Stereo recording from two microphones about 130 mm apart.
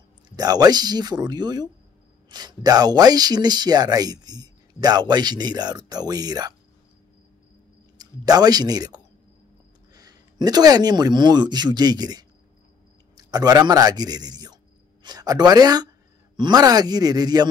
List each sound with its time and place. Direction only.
0.4 s speech: 30° right (ahead or behind)
8.0 s speech: 30° right (ahead or behind)